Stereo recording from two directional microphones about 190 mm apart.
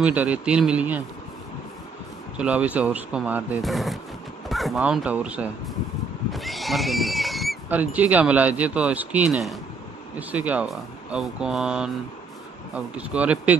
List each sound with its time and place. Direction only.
0.0 s speech: 10° right (ahead or behind)
2.3 s speech: 5° right (ahead or behind)